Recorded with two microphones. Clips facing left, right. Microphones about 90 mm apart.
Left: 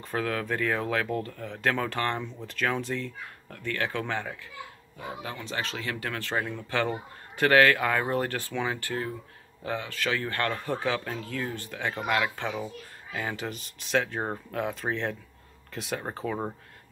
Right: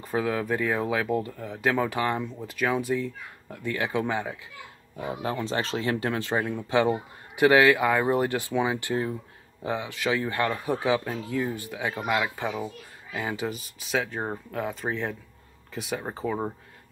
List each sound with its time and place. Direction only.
0.0 s speech: 10° right (ahead or behind)
5.2 s speech: 35° right (ahead or behind); by 16.5 s 5° right (ahead or behind)